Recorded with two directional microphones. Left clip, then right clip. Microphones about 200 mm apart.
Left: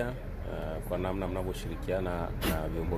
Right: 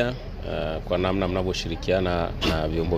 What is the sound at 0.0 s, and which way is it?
Speech, 40° right (ahead or behind).